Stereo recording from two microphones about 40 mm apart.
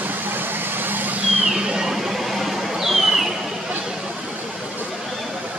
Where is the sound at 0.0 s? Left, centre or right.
Right.